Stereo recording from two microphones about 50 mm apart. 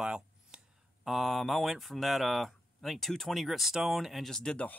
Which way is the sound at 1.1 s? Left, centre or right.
Centre.